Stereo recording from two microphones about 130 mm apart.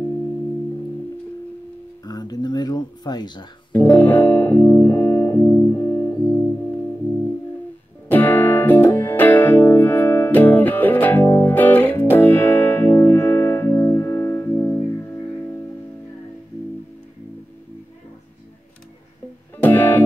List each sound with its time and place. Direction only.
2.0 s a sound: 30° left (ahead or behind)
3.7 s music: 15° left (ahead or behind)
6.1 s music: 5° left (ahead or behind)
8.1 s music: 15° left (ahead or behind)
19.6 s music: 15° left (ahead or behind)